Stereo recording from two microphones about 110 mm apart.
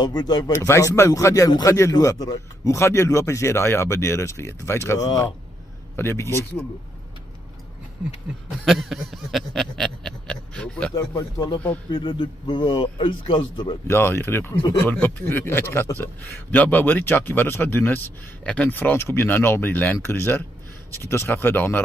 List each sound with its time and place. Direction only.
0.0 s speech: 40° left (ahead or behind)
0.5 s a man's voice: 25° left (ahead or behind)
8.6 s a sound: centre (ahead or behind)
11.0 s a man's voice: 35° left (ahead or behind)
13.8 s a man's voice: 20° left (ahead or behind)